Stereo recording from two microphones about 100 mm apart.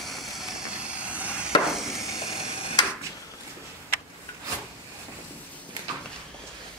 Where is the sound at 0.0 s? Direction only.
Centre (ahead or behind).